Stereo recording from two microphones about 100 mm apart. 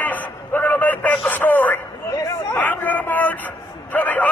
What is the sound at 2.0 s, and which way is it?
Chatter, 35° left (ahead or behind).